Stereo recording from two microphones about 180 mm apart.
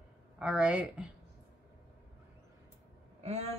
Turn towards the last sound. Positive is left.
turn(degrees=-35)  # may be behind; listen again after turning